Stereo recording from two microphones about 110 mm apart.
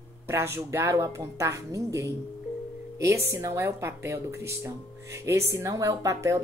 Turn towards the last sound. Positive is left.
turn(degrees=-30)  # may be behind; listen again after turning